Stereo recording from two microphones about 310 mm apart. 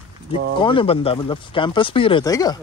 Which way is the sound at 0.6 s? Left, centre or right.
Centre.